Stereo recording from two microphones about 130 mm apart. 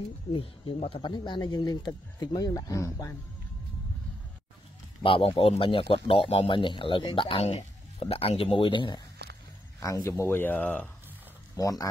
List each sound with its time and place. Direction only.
0.3 s speech: 40° left (ahead or behind); by 3.2 s 25° left (ahead or behind)
5.0 s speech: 40° left (ahead or behind)
9.8 s speech: 25° left (ahead or behind)
11.5 s speech: 25° left (ahead or behind)